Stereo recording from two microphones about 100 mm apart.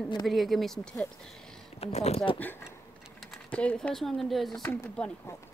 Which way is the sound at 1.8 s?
90° left.